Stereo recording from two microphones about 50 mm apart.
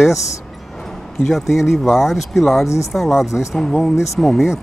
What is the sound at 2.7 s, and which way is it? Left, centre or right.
Speech, left.